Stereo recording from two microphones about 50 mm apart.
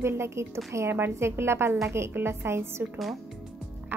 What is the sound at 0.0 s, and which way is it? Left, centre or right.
A woman's voice, right.